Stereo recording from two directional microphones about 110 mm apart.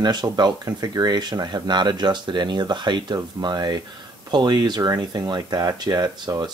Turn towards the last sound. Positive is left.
turn(degrees=-40)  # may be behind; listen again after turning